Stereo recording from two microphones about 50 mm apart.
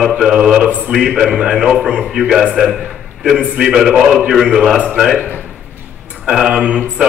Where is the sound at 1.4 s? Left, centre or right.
Centre.